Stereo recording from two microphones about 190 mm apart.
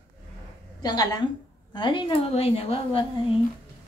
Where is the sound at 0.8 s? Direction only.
20° left (ahead or behind).